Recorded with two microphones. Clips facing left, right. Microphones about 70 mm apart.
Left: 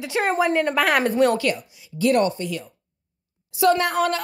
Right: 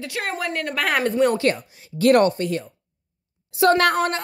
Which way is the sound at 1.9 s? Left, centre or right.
Right.